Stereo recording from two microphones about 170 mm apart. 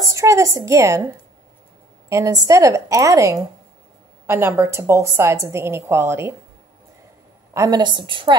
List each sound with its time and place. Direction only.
0.1 s a woman's voice: 20° right (ahead or behind)
2.0 s a woman's voice: 20° right (ahead or behind)
7.5 s a woman's voice: 20° right (ahead or behind)